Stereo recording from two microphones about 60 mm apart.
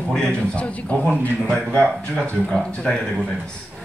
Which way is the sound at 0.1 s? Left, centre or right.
Centre.